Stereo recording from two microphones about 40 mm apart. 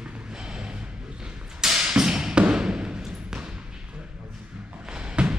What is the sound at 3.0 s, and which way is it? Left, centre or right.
Thump, centre.